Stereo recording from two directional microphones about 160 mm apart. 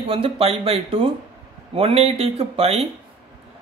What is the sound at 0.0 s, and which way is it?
Speech, 35° right (ahead or behind).